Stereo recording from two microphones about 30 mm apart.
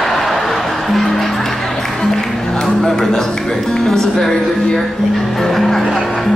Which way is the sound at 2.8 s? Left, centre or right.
Centre.